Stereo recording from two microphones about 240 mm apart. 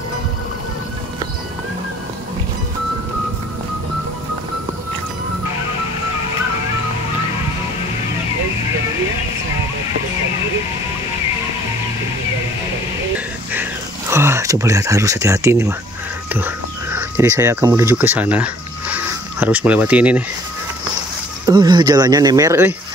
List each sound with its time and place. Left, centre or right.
13.5 s a sound: centre
16.3 s speech: centre
21.5 s speech: centre